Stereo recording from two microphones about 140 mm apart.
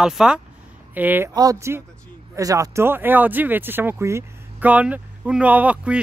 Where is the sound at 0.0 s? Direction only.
5° right (ahead or behind).